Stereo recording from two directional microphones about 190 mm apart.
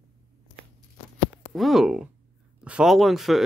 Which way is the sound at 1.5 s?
Centre (ahead or behind).